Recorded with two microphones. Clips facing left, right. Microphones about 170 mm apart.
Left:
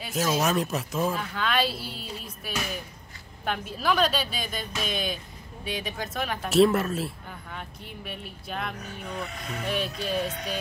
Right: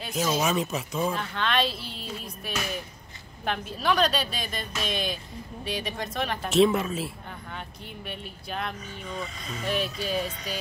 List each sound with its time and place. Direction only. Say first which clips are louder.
0.0 s a woman's voice: left 1 dB; centre (ahead or behind)
8.7 s speech: left 1 dB; 65° left (ahead or behind)
10.0 s a woman's voice: left 1 dB; centre (ahead or behind)
10.3 s speech: left 3 dB; 60° left (ahead or behind)